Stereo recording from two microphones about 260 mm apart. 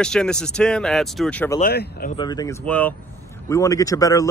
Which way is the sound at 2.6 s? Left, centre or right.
Centre.